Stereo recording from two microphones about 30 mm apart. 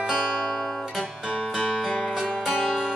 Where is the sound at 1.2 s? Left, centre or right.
Right.